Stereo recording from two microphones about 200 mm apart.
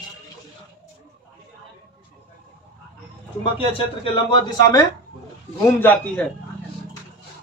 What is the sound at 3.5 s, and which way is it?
Speech, 25° left (ahead or behind).